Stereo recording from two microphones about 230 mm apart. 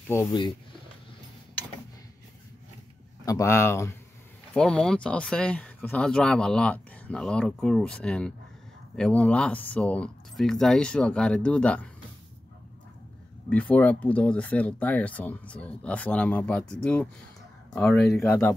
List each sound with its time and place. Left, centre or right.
0.1 s speech: centre
3.3 s speech: centre
13.5 s speech: centre